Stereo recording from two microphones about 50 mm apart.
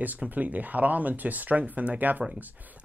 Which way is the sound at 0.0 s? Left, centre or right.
Right.